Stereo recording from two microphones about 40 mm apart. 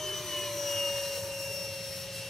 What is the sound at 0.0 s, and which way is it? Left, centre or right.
Jet engine, centre.